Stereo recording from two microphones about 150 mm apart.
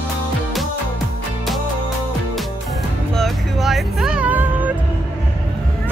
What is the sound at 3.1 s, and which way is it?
Music, centre (ahead or behind).